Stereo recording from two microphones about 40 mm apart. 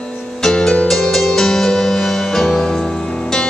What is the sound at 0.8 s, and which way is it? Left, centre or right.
Music, centre.